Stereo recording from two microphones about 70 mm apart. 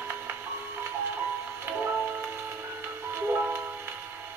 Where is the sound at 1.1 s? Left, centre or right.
Right.